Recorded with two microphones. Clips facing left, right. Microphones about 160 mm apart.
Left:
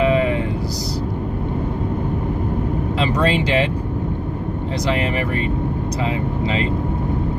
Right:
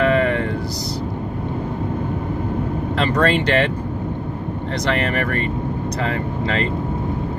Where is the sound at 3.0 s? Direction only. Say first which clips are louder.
Right 1 dB; 5° left (ahead or behind).